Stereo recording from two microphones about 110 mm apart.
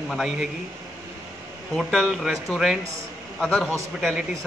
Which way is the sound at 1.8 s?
Centre (ahead or behind).